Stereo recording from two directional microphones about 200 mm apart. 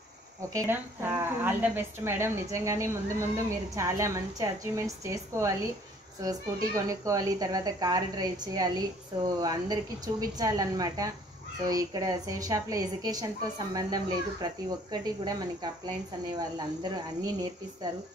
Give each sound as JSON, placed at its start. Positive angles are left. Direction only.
{"t": 0.5, "sound": "a woman's voice", "side_deg": -15}